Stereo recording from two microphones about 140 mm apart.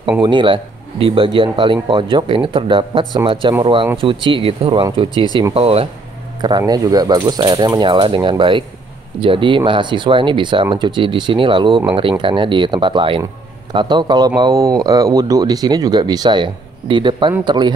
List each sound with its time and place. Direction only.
0.2 s speech: 35° right (ahead or behind)
6.4 s speech: 30° right (ahead or behind)